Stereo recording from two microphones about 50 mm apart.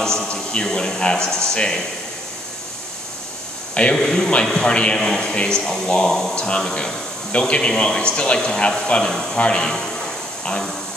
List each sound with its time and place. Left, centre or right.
0.0 s speech: centre
3.9 s speech: centre
4.6 s a man's voice: left
9.1 s speech: centre
9.4 s a man's voice: left